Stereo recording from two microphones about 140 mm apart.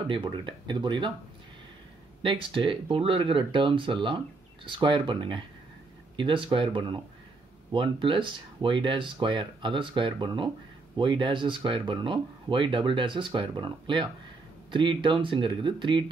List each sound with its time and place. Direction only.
0.1 s speech: 35° right (ahead or behind)
2.2 s speech: 40° right (ahead or behind)